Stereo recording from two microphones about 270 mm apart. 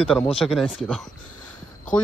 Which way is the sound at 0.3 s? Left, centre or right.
Centre.